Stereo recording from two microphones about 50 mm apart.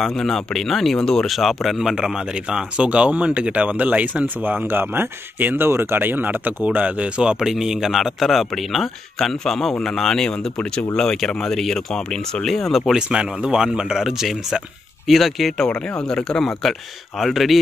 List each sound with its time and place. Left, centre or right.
0.0 s speech: centre
1.8 s speech: centre
7.4 s speech: centre
12.9 s speech: centre
16.0 s speech: centre
17.2 s speech: centre